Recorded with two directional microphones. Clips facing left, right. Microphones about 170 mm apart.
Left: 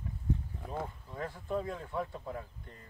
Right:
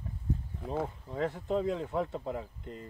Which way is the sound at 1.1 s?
75° right (ahead or behind).